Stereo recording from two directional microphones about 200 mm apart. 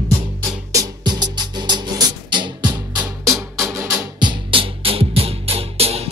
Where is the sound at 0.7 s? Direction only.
20° right (ahead or behind).